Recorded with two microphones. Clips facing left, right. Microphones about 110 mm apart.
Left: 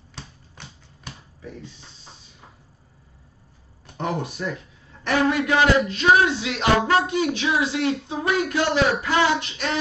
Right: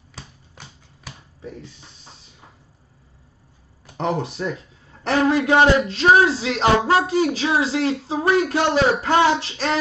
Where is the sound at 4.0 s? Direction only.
25° right (ahead or behind).